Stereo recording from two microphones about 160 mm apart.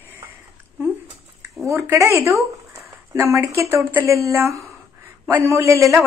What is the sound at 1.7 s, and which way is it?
Speech, 20° right (ahead or behind).